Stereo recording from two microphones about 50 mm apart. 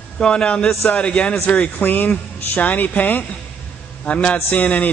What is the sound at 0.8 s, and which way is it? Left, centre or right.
Music, left.